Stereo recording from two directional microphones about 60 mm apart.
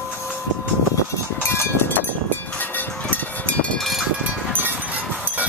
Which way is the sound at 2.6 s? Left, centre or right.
Left.